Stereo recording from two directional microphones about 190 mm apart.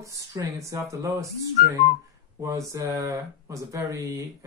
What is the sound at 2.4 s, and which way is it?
Speech, 15° right (ahead or behind).